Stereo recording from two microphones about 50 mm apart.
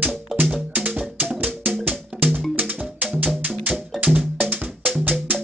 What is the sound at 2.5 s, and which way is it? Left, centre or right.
Music, right.